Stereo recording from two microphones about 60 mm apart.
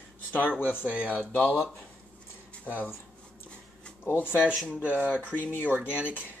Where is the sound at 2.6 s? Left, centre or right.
Left.